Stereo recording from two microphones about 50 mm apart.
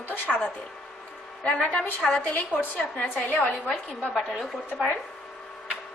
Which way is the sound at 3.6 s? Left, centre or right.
Centre.